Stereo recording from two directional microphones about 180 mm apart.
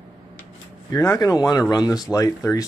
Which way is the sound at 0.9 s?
20° left (ahead or behind).